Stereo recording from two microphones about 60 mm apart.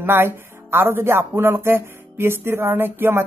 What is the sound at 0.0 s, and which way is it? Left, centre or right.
Speech, right.